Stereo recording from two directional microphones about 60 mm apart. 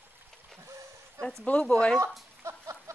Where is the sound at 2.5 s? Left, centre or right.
Right.